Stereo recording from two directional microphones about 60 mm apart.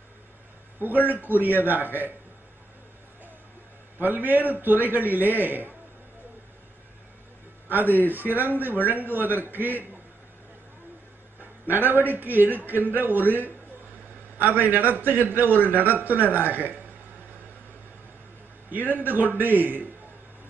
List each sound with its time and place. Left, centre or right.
1.0 s a man's voice: right
4.0 s a man's voice: right
7.7 s a man's voice: right
11.6 s a man's voice: right
18.9 s a man's voice: right